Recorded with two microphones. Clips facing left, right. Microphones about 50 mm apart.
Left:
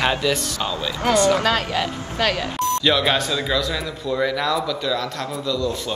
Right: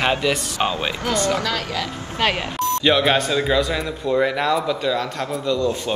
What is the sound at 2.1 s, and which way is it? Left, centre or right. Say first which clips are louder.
Speech: right 1 dB; right.